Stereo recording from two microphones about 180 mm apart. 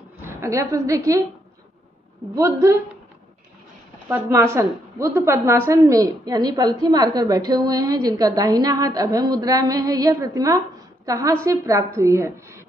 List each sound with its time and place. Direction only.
0.2 s a woman's voice: 15° right (ahead or behind)
2.3 s a woman's voice: 15° right (ahead or behind)
4.1 s a woman's voice: 15° right (ahead or behind)